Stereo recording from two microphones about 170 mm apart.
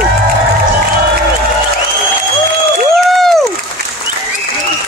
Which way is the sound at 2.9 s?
Centre (ahead or behind).